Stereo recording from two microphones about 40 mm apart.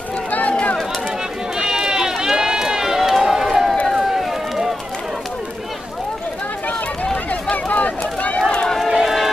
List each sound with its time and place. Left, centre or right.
0.3 s run: left
1.6 s run: centre
7.2 s run: left
8.8 s crowd: centre